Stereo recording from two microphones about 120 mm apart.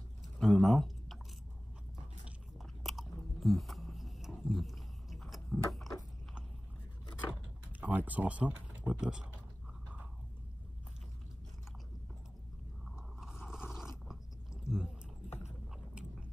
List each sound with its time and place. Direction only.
0.4 s typing: centre (ahead or behind)
2.6 s biting: centre (ahead or behind)
7.8 s speech: 15° right (ahead or behind)
12.8 s a sound: 5° right (ahead or behind)
15.2 s boat: 60° left (ahead or behind)